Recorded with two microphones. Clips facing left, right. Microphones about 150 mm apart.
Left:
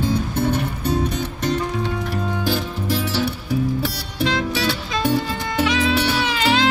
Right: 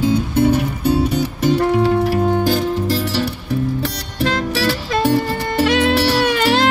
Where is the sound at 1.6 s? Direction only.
70° right (ahead or behind).